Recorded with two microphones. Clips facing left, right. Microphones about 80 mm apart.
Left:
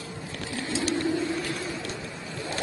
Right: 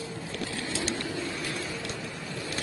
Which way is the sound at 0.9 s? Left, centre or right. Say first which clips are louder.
Left 7 dB; left.